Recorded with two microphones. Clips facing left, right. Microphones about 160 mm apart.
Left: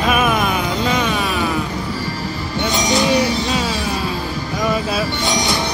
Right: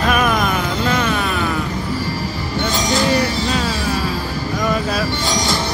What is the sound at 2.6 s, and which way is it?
Train, 20° left (ahead or behind).